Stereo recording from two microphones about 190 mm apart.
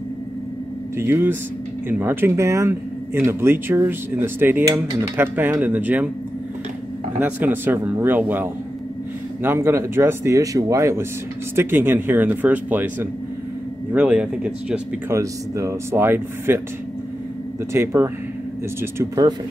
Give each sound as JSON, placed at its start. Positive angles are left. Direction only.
{"t": 0.9, "sound": "speech", "side_deg": -10}
{"t": 7.2, "sound": "speech", "side_deg": -10}
{"t": 17.7, "sound": "speech", "side_deg": -15}